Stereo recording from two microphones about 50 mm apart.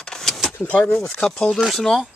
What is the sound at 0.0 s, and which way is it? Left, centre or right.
Vehicle, centre.